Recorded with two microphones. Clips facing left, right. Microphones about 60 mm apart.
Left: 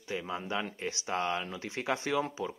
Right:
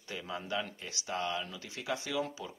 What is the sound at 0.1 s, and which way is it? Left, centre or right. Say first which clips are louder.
Speech: left 3 dB; left.